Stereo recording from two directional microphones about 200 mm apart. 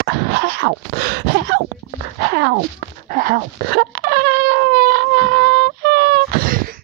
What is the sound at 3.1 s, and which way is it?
Wail, 45° right (ahead or behind).